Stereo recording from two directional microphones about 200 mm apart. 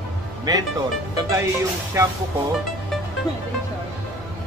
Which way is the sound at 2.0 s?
15° right (ahead or behind).